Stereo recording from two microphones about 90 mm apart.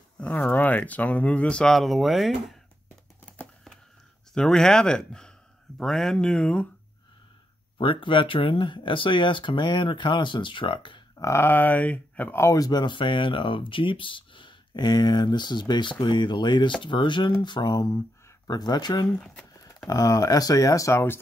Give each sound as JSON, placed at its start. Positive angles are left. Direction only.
{"t": 0.2, "sound": "speech", "side_deg": 15}
{"t": 4.3, "sound": "speech", "side_deg": 5}
{"t": 7.7, "sound": "speech", "side_deg": 70}
{"t": 11.1, "sound": "speech", "side_deg": 30}
{"t": 12.4, "sound": "speech", "side_deg": 40}
{"t": 19.5, "sound": "a sound", "side_deg": 40}
{"t": 19.9, "sound": "speech", "side_deg": 45}